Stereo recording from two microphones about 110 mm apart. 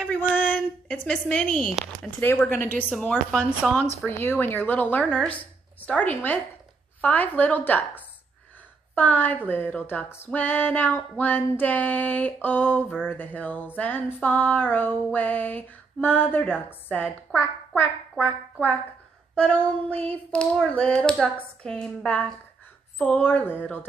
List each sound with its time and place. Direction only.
0.0 s a sound: 10° left (ahead or behind)
2.3 s music: 10° left (ahead or behind)
5.2 s speech: 10° left (ahead or behind)
7.0 s music: 15° left (ahead or behind)
16.9 s a woman's voice: 15° left (ahead or behind)
18.2 s music: 15° left (ahead or behind)